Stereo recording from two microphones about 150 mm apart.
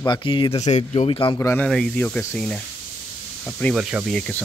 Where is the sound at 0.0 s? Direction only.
30° left (ahead or behind).